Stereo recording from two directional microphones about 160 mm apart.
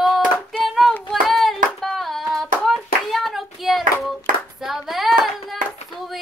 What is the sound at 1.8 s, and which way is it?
Female singing, centre (ahead or behind).